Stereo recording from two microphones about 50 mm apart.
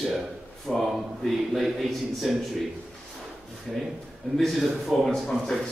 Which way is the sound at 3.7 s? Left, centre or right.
Centre.